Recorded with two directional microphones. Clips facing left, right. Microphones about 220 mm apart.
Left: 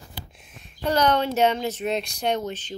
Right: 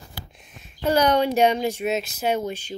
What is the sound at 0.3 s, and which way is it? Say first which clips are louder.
Speech: right 1 dB; centre (ahead or behind).